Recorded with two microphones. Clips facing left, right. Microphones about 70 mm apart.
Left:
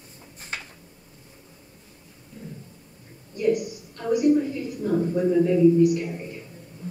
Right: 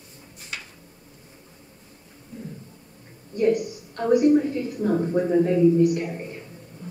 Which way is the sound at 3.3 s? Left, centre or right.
Right.